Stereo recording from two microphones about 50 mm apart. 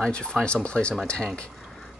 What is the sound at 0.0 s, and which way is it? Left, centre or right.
Speech, centre.